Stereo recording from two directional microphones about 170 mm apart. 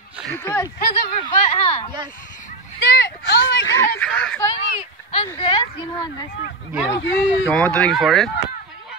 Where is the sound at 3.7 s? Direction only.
15° left (ahead or behind).